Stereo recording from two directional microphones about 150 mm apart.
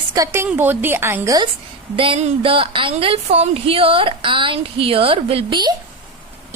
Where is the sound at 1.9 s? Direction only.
35° right (ahead or behind).